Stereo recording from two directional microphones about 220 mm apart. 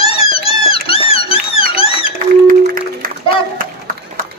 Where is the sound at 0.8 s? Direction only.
25° left (ahead or behind).